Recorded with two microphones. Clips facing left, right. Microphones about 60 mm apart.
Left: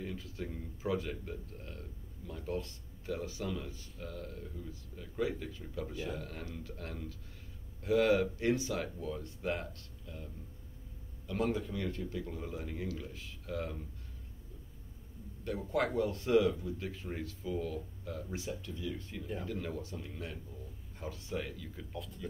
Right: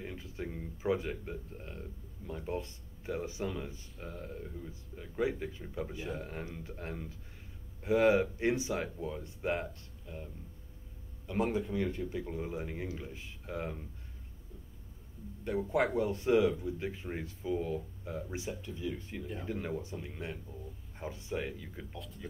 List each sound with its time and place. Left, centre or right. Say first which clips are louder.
0.0 s speech: even; right
15.4 s speech: right 3 dB; right
21.9 s speech: left 2 dB; centre